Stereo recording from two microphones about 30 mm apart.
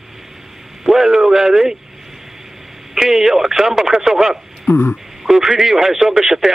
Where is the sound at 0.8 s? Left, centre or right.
Centre.